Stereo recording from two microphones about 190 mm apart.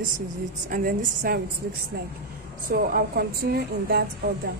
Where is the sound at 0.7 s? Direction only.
45° right (ahead or behind).